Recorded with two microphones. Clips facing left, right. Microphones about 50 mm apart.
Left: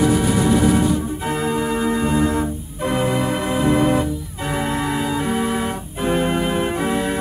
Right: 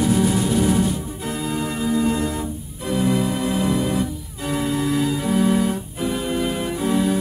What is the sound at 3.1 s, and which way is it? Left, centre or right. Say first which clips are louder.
Music: left 1 dB; left.